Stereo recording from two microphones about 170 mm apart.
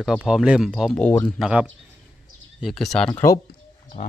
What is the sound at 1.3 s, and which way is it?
Speech, 5° right (ahead or behind).